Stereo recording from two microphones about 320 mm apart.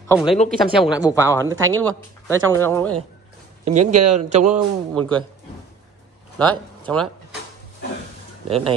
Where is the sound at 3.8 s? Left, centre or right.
Right.